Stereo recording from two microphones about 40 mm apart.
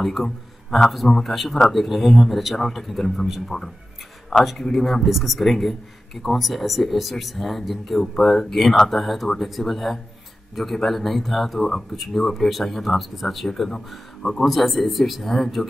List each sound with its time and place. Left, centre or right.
0.0 s speech: centre
3.5 s speech: centre
4.4 s speech: centre
14.4 s speech: centre